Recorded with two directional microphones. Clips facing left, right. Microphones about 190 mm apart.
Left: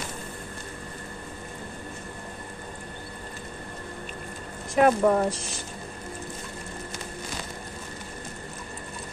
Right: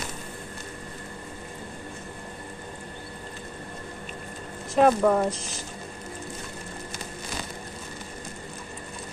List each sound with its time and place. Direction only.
4.7 s speech: 5° left (ahead or behind)